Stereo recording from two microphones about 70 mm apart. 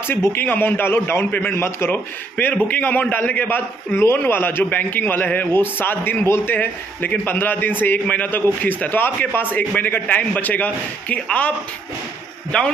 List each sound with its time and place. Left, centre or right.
0.1 s a man's voice: left
12.5 s a man's voice: centre